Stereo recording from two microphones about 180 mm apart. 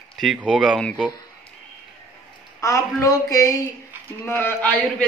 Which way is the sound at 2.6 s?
15° left (ahead or behind).